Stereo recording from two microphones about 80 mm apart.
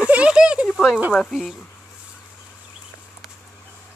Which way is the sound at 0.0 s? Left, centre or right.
Centre.